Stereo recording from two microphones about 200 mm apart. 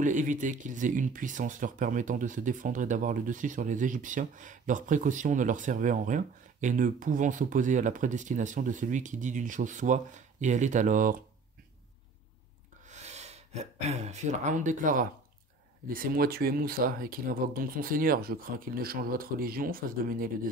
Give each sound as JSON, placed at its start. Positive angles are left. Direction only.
{"t": 0.0, "sound": "speech", "side_deg": -40}
{"t": 12.8, "sound": "speech", "side_deg": -35}